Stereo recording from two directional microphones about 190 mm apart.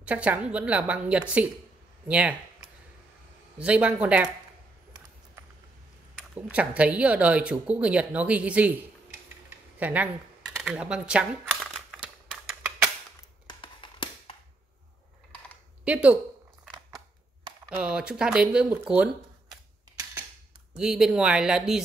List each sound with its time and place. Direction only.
0.0 s speech: 5° right (ahead or behind)
6.5 s speech: 5° right (ahead or behind)
9.5 s a sound: 10° right (ahead or behind)
13.5 s a sound: 25° left (ahead or behind)
15.8 s speech: 5° right (ahead or behind)
17.6 s speech: 5° right (ahead or behind)
20.7 s speech: 5° right (ahead or behind)